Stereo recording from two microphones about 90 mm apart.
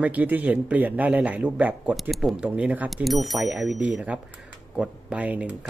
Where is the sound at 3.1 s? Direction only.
Centre (ahead or behind).